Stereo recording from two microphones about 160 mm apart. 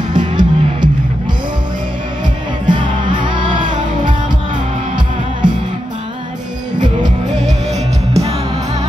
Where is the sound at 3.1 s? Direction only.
30° right (ahead or behind).